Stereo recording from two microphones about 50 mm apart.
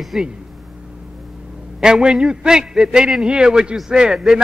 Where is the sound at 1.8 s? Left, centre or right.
Centre.